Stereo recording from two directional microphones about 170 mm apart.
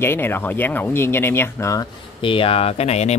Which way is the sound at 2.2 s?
30° left (ahead or behind).